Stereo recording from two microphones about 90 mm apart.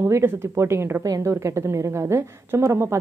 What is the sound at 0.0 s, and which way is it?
A woman's voice, 30° right (ahead or behind).